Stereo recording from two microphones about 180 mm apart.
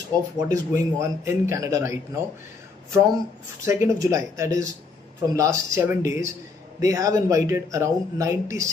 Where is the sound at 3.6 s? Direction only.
15° right (ahead or behind).